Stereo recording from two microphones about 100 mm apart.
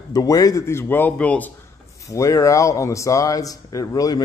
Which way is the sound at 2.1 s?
30° left (ahead or behind).